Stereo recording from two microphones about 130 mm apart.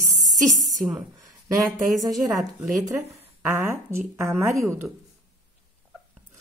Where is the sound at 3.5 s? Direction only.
20° right (ahead or behind).